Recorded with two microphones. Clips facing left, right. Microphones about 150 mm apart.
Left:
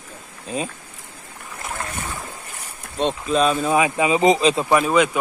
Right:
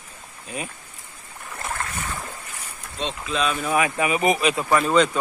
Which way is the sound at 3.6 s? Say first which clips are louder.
Left 4 dB; 20° left (ahead or behind).